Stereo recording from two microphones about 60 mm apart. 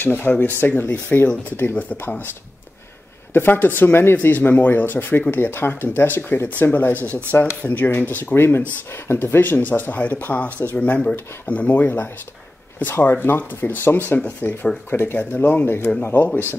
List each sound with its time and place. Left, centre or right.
0.0 s speech: left
3.3 s speech: left
15.1 s speech: left